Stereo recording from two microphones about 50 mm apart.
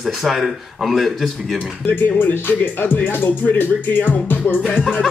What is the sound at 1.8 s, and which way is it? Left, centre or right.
Speech, left.